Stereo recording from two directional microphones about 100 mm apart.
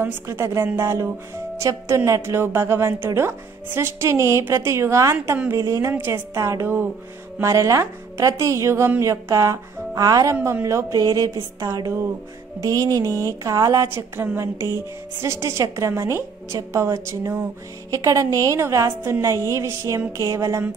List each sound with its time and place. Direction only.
0.0 s a woman's voice: 30° right (ahead or behind)